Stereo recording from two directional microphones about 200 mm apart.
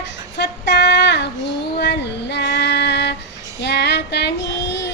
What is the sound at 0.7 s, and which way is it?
Female singing, 60° left (ahead or behind).